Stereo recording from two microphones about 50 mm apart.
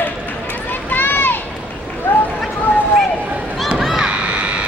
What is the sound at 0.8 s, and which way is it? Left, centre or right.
Run, left.